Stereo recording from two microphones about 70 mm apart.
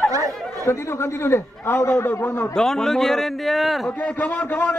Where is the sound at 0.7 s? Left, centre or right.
Left.